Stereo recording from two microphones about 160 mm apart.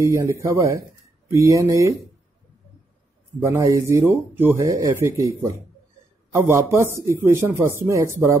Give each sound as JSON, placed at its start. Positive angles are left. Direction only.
{"t": 0.0, "sound": "speech", "side_deg": -20}
{"t": 3.4, "sound": "speech", "side_deg": -20}